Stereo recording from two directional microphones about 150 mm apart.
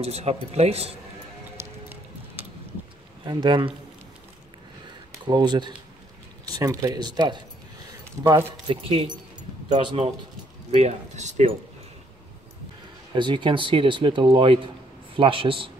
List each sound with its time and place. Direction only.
0.0 s speech: 45° right (ahead or behind)
1.6 s music: 15° right (ahead or behind)
3.3 s speech: 30° right (ahead or behind)
5.2 s speech: 30° right (ahead or behind)
8.6 s speech: 35° right (ahead or behind)
10.7 s speech: 50° right (ahead or behind)
13.1 s speech: 30° right (ahead or behind)